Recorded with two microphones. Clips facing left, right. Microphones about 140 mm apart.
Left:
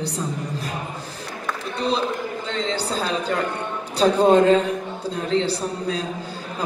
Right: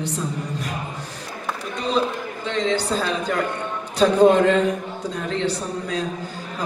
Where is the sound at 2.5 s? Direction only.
35° left (ahead or behind).